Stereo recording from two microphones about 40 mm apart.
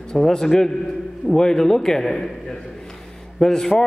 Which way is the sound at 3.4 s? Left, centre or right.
Centre.